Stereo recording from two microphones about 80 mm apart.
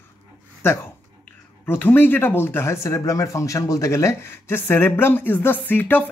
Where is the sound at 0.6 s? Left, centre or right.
Left.